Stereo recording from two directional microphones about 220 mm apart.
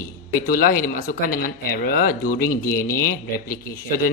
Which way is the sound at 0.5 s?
40° left (ahead or behind).